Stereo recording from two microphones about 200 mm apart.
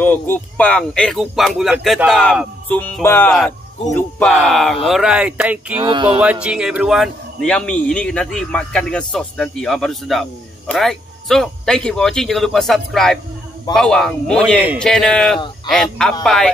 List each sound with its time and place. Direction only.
0.0 s a man's voice: 10° left (ahead or behind); by 5.8 s 5° right (ahead or behind)
5.8 s speech: 20° right (ahead or behind)
6.4 s a man's voice: 5° right (ahead or behind)